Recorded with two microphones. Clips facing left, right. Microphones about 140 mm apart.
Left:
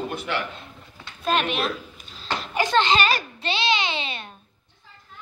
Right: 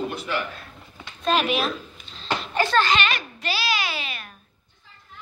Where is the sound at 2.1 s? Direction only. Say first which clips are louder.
Right 2 dB; 5° left (ahead or behind).